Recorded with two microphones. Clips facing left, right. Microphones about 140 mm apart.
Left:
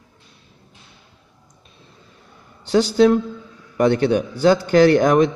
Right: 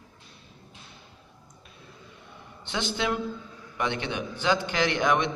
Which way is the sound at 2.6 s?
40° left (ahead or behind).